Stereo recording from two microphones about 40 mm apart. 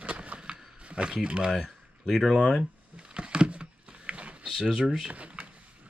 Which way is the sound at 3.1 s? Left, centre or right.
Right.